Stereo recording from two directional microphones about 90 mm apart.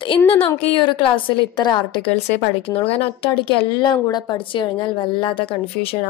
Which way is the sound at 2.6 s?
90° left.